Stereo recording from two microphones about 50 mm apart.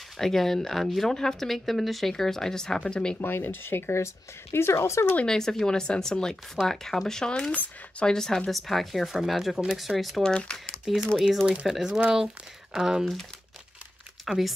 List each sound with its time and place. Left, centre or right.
0.2 s speech: centre
3.2 s speech: left
5.2 s speech: centre
10.2 s speech: centre
11.6 s speech: centre
14.2 s speech: centre